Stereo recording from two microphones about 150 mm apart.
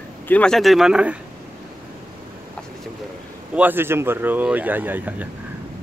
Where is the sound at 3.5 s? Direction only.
15° right (ahead or behind).